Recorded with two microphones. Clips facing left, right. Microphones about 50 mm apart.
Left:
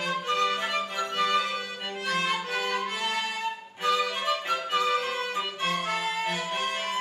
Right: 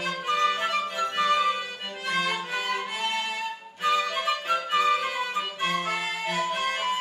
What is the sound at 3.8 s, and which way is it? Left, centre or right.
Music, centre.